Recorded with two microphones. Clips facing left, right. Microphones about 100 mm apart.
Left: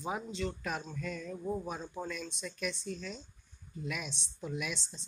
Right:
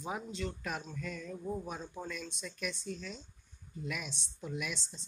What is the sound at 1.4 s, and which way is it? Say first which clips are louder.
Speech: left 2 dB; 20° left (ahead or behind).